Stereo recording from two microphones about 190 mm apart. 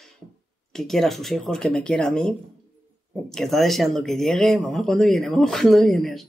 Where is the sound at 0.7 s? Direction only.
Centre (ahead or behind).